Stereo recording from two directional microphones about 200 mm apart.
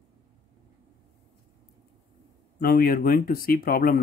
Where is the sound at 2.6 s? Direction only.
45° left (ahead or behind).